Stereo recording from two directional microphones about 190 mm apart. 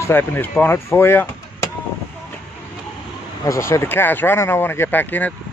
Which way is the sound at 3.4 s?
15° left (ahead or behind).